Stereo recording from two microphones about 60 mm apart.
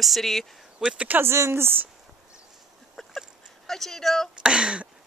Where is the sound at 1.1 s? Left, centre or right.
Right.